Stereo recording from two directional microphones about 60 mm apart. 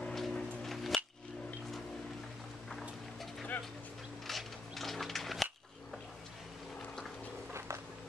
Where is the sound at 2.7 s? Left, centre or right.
Centre.